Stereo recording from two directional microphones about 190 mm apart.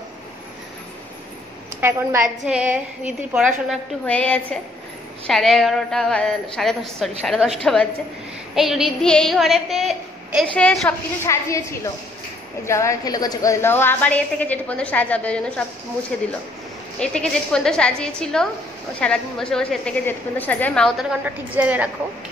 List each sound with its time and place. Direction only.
1.8 s a woman's voice: 15° right (ahead or behind)
4.0 s a woman's voice: 5° left (ahead or behind)
11.2 s a woman's voice: 15° left (ahead or behind); by 21.8 s 10° right (ahead or behind)